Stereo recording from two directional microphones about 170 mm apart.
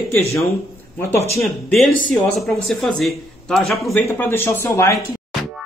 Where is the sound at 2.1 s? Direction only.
Centre (ahead or behind).